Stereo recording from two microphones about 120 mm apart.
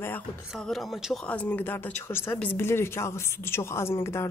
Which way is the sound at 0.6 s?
Centre (ahead or behind).